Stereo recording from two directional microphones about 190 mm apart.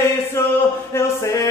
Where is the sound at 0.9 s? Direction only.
15° left (ahead or behind).